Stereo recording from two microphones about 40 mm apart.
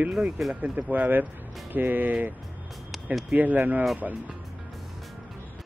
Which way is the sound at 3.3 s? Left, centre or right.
Right.